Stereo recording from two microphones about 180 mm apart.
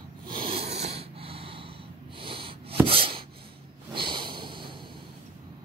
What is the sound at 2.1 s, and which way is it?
Wheeze, 30° right (ahead or behind).